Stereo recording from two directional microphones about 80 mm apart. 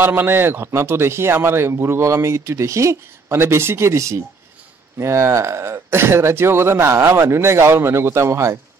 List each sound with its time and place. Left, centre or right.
0.0 s speech: right